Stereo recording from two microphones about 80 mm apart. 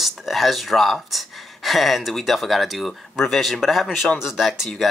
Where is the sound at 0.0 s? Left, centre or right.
Centre.